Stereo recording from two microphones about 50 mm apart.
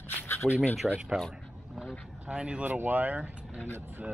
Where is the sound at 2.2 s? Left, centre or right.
Right.